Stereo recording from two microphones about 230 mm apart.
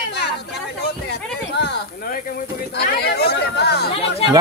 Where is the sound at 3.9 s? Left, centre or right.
Left.